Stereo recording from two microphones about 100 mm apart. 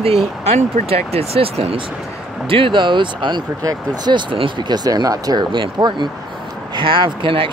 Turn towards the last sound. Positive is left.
turn(degrees=-60)  # may be behind; listen again after turning